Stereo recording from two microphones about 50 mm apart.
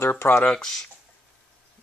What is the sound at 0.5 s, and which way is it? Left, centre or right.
Speech, centre.